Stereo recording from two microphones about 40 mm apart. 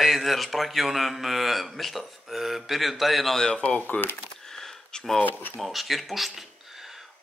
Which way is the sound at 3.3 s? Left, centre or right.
Left.